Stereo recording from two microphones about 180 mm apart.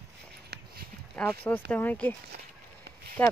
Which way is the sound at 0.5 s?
65° right (ahead or behind).